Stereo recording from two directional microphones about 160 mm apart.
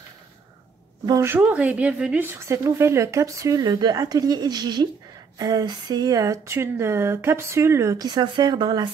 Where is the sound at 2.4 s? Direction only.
15° right (ahead or behind).